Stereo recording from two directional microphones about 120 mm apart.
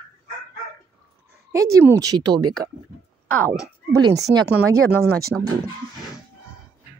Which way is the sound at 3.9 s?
30° right (ahead or behind).